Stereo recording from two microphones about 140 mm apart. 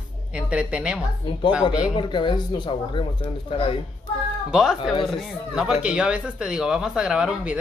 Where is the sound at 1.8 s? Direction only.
35° left (ahead or behind).